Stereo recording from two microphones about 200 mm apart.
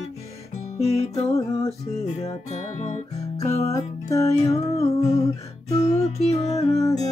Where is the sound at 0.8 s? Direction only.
30° left (ahead or behind).